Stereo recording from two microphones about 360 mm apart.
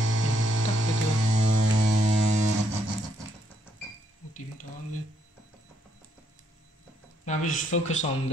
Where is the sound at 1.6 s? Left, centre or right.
Right.